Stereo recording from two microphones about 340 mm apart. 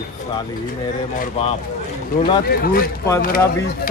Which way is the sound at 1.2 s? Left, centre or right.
Centre.